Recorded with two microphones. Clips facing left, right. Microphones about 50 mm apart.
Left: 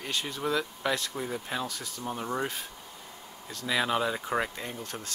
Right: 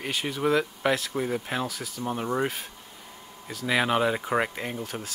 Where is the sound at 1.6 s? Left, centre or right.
Centre.